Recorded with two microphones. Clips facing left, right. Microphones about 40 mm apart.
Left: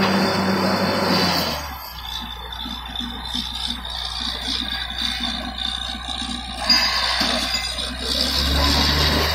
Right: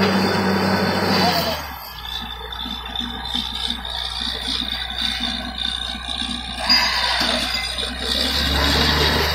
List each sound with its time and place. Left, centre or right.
0.0 s a sound: centre
0.7 s vehicle: centre
1.0 s music: centre
6.7 s music: centre
8.1 s vehicle: right
9.0 s vehicle: centre